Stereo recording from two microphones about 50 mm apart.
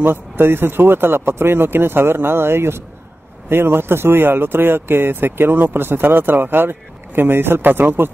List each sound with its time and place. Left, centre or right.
0.0 s speech: right